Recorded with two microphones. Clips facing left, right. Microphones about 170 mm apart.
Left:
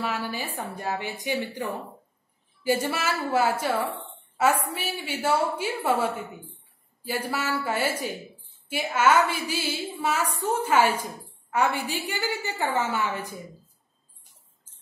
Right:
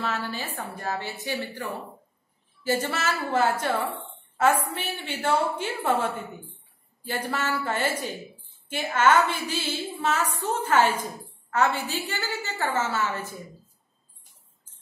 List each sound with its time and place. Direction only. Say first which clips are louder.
0.0 s a woman's voice: left 1 dB; 10° left (ahead or behind)